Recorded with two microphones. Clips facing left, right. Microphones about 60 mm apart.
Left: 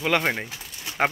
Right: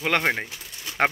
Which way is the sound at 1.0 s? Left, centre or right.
Right.